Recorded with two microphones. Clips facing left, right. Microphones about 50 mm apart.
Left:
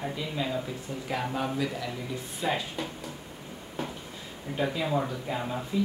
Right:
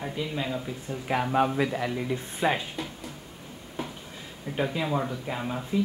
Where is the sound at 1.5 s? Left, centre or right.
Right.